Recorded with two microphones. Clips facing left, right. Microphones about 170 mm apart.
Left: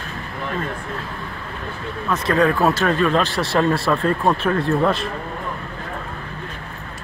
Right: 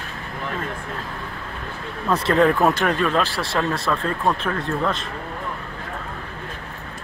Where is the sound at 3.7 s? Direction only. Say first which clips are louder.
Left 5 dB; 5° left (ahead or behind).